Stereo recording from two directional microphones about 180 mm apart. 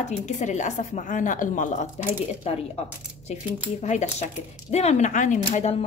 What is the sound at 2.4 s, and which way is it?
Speech, 35° left (ahead or behind).